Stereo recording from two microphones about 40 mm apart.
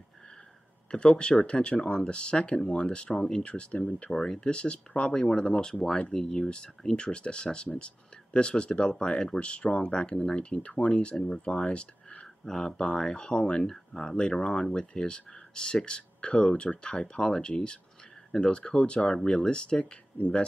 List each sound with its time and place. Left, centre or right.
0.9 s speech: left
3.7 s speech: left
4.1 s speech: centre
9.4 s speech: left
11.1 s speech: centre
11.4 s speech: left
12.4 s speech: centre
13.3 s speech: left